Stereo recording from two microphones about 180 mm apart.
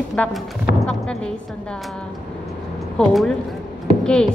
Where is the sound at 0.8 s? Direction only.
5° left (ahead or behind).